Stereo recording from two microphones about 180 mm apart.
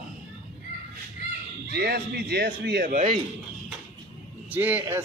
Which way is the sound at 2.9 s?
35° right (ahead or behind).